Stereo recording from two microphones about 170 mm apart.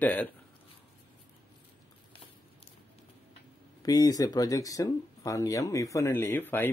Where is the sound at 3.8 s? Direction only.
20° left (ahead or behind).